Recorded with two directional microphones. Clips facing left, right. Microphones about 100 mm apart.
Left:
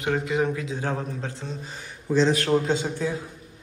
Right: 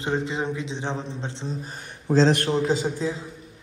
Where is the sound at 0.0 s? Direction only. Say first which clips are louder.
Left 2 dB; 30° right (ahead or behind).